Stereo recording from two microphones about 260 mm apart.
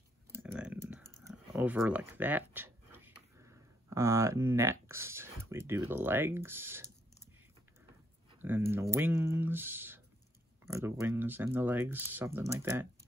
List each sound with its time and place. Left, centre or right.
0.3 s clicking: centre
1.2 s speech: centre
8.4 s speech: centre